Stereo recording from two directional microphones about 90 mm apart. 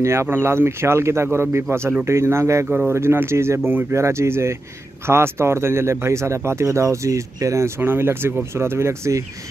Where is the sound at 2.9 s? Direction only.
30° right (ahead or behind).